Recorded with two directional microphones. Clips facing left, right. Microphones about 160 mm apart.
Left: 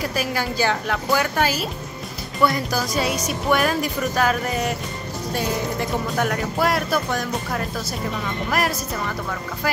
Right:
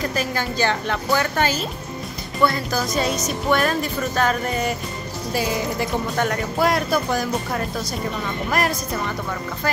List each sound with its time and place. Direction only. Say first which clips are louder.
0.0 s speech: even; 10° left (ahead or behind)